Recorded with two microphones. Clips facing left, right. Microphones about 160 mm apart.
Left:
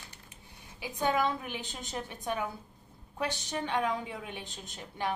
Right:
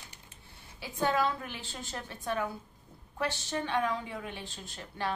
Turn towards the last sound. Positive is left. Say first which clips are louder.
# left 1 dB
turn(degrees=20)  # may be behind; listen again after turning